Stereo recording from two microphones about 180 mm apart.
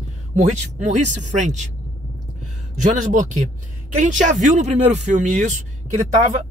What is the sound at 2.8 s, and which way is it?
Speech, 40° right (ahead or behind).